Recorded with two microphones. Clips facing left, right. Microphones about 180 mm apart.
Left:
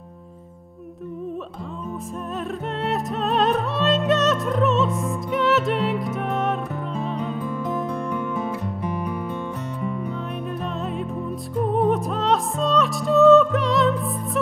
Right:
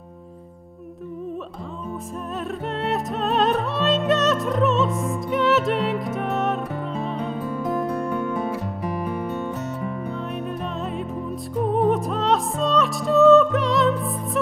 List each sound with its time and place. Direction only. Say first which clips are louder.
2.7 s music: even; centre (ahead or behind)
10.8 s music: left 1 dB; centre (ahead or behind)